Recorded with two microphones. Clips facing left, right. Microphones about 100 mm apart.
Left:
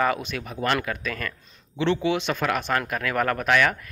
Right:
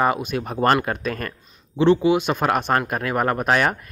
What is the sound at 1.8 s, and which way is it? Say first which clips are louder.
Speech: right 7 dB; 15° right (ahead or behind).